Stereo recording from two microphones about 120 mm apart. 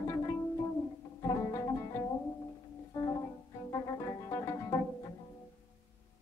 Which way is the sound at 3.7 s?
30° left (ahead or behind).